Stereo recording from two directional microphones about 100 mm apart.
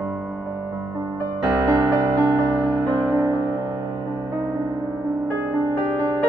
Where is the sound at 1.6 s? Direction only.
35° right (ahead or behind).